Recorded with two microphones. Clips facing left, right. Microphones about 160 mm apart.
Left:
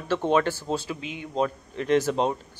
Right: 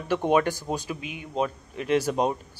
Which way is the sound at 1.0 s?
25° left (ahead or behind).